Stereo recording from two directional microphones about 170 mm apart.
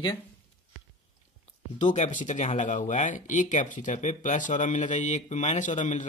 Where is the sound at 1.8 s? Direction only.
45° left (ahead or behind).